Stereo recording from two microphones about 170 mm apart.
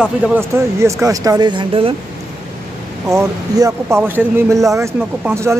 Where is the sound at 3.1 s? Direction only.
15° right (ahead or behind).